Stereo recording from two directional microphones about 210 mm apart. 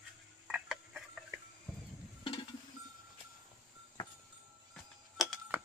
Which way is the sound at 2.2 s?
25° left (ahead or behind).